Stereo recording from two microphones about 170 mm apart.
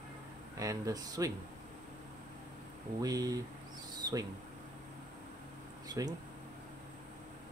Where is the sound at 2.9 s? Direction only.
20° right (ahead or behind).